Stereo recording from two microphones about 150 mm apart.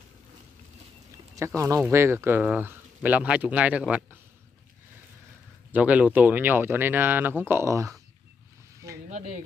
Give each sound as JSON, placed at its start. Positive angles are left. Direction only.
{"t": 1.6, "sound": "speech", "side_deg": -20}
{"t": 5.7, "sound": "speech", "side_deg": -10}